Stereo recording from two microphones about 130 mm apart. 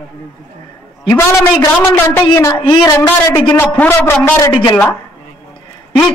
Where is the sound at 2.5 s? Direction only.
40° left (ahead or behind).